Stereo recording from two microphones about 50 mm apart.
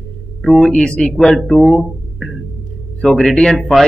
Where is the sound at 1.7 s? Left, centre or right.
Centre.